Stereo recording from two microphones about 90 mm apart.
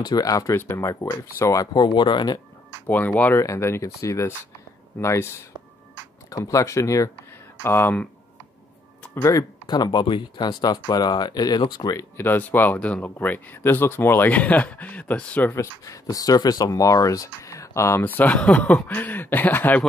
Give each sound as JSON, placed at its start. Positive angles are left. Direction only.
{"t": 0.0, "sound": "speech", "side_deg": 45}
{"t": 0.6, "sound": "speech", "side_deg": 30}
{"t": 1.4, "sound": "speech", "side_deg": 40}
{"t": 2.9, "sound": "speech", "side_deg": 20}
{"t": 3.3, "sound": "speech", "side_deg": 30}
{"t": 6.3, "sound": "speech", "side_deg": 40}
{"t": 7.6, "sound": "speech", "side_deg": 25}
{"t": 9.1, "sound": "speech", "side_deg": 35}
{"t": 9.7, "sound": "speech", "side_deg": 55}
{"t": 12.2, "sound": "speech", "side_deg": 20}
{"t": 15.5, "sound": "speech", "side_deg": 35}
{"t": 18.0, "sound": "speech", "side_deg": 20}